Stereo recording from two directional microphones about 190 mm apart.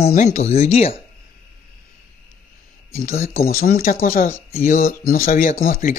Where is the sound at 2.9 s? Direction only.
50° left (ahead or behind).